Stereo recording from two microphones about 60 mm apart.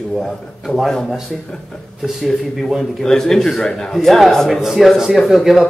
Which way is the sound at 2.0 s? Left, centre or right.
Centre.